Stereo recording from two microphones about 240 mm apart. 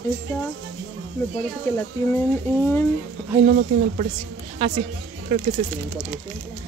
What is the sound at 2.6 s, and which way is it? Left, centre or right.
Speech, centre.